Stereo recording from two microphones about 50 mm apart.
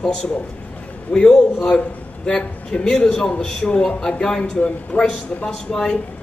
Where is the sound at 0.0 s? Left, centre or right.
Centre.